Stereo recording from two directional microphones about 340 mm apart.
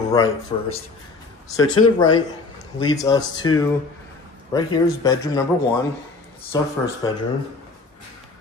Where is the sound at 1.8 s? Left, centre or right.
Centre.